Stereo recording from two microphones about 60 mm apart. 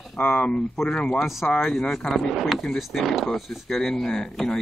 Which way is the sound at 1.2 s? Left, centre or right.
Centre.